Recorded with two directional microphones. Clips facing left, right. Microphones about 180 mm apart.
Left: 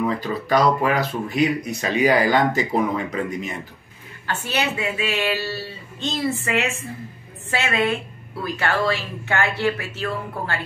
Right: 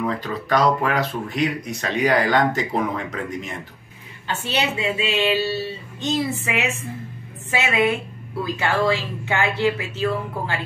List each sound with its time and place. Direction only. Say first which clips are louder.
0.0 s speech: left 2 dB; 5° left (ahead or behind)
4.5 s speech: right 1 dB; 25° right (ahead or behind)